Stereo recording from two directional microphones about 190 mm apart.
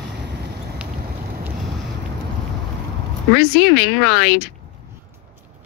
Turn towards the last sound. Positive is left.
turn(degrees=60)  # may be behind; listen again after turning